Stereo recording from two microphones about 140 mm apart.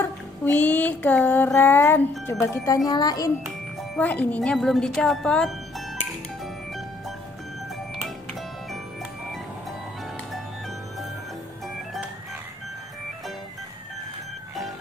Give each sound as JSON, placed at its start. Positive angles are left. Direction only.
{"t": 0.0, "sound": "music", "side_deg": 15}
{"t": 2.4, "sound": "speech", "side_deg": 20}
{"t": 3.9, "sound": "speech", "side_deg": 10}